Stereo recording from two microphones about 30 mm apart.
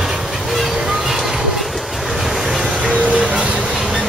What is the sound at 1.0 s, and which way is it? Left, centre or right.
Music, centre.